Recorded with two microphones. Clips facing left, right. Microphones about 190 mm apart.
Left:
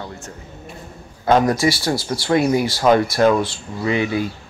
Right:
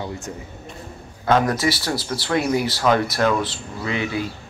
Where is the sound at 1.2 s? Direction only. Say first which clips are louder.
Left 3 dB; 15° left (ahead or behind).